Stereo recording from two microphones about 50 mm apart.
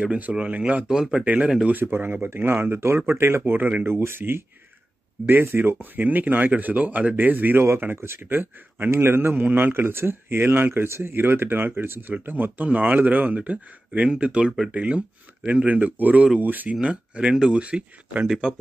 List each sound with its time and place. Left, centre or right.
0.0 s speech: right
0.8 s speech: centre
1.2 s speech: right
1.7 s speech: right
3.5 s speech: right
3.8 s speech: right
7.5 s speech: right
16.8 s speech: right
18.2 s speech: centre